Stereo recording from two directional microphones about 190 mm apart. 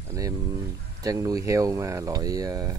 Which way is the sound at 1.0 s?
20° right (ahead or behind).